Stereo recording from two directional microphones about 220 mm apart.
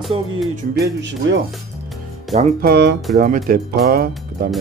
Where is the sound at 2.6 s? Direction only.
45° right (ahead or behind).